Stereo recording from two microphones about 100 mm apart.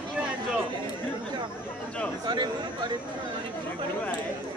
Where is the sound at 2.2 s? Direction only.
50° right (ahead or behind).